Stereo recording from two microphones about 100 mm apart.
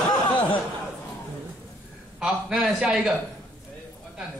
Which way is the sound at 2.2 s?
5° right (ahead or behind).